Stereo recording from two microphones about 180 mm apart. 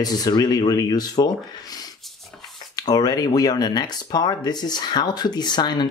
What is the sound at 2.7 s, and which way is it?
Speech, 20° left (ahead or behind).